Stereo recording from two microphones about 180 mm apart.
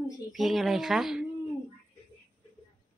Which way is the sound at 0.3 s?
Centre (ahead or behind).